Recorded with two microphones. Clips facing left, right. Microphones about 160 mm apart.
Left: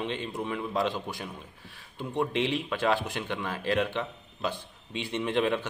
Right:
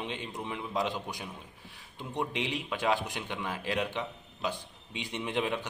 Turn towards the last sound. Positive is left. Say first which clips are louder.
# left 5 dB
turn(degrees=-15)  # may be behind; listen again after turning